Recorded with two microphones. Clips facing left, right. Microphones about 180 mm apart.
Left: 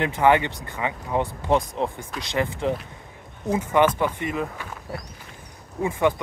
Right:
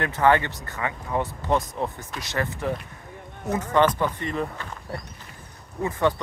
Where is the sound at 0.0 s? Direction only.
15° left (ahead or behind).